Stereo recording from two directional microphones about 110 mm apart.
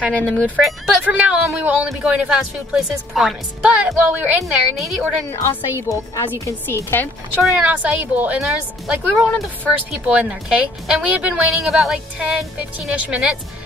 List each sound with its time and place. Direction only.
0.0 s speech: 10° left (ahead or behind)
0.6 s speech: centre (ahead or behind)
1.9 s a woman's voice: centre (ahead or behind)
5.8 s a woman's voice: 30° left (ahead or behind)
7.4 s a woman's voice: 10° right (ahead or behind)
9.8 s speech: 15° right (ahead or behind)
11.4 s a woman's voice: centre (ahead or behind)